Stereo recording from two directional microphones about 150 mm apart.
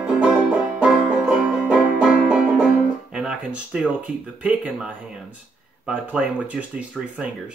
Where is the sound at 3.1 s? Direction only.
5° right (ahead or behind).